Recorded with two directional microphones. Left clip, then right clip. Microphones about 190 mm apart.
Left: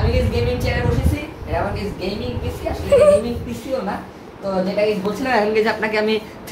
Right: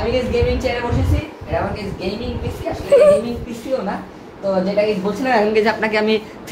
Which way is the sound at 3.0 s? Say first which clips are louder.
Right 1 dB; 5° right (ahead or behind).